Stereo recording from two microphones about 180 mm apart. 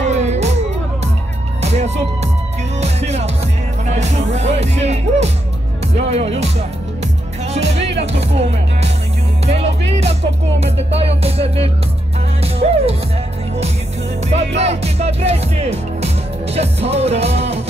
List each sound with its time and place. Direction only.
0.0 s music: 40° right (ahead or behind)
1.6 s music: 35° right (ahead or behind)
7.5 s music: 35° right (ahead or behind)
12.6 s music: 45° right (ahead or behind)
14.6 s music: 35° right (ahead or behind)
16.5 s music: 35° right (ahead or behind)